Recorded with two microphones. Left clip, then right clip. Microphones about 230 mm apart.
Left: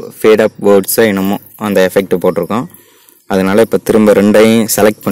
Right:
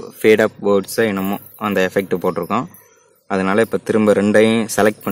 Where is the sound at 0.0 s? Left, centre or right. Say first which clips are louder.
Left 5 dB; left.